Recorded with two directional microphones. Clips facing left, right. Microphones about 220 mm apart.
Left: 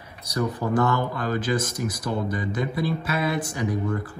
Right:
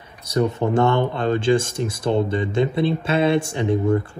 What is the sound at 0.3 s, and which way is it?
Speech, 25° right (ahead or behind).